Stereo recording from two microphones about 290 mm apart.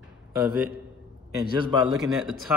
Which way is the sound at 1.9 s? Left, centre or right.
Centre.